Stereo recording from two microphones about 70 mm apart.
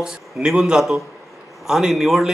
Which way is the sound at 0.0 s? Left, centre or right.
Centre.